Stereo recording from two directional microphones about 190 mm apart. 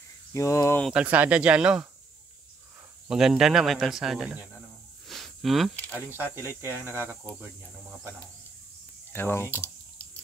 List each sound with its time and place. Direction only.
0.3 s speech: 15° left (ahead or behind)
0.8 s speech: 5° right (ahead or behind)
3.1 s speech: centre (ahead or behind)
5.0 s a sound: centre (ahead or behind)
6.0 s speech: 10° right (ahead or behind)
9.1 s speech: 10° left (ahead or behind)